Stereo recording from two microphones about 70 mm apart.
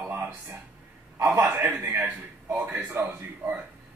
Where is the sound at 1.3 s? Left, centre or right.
Right.